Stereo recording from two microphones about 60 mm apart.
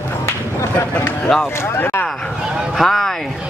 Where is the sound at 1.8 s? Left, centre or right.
Left.